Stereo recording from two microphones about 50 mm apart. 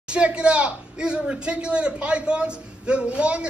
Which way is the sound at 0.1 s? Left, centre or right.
Right.